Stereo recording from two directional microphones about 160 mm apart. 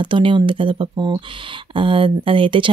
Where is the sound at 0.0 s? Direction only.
30° right (ahead or behind).